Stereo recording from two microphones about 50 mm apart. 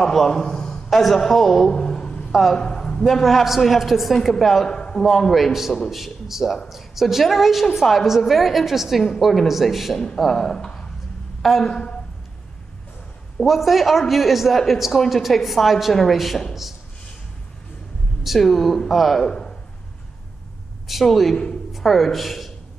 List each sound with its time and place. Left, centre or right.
0.0 s a man's voice: centre
2.3 s a woman's voice: centre
4.6 s a sound: centre
5.0 s a woman's voice: centre
13.4 s a woman's voice: centre
18.2 s a woman's voice: centre
20.8 s a woman's voice: centre